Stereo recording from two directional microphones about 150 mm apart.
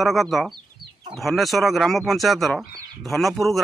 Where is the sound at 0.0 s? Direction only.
Centre (ahead or behind).